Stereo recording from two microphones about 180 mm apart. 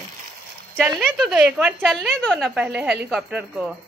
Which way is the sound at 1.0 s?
Centre (ahead or behind).